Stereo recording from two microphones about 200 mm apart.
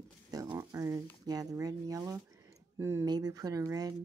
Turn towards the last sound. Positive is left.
turn(degrees=-15)  # may be behind; listen again after turning